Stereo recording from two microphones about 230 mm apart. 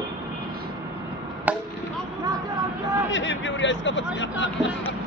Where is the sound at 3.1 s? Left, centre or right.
Left.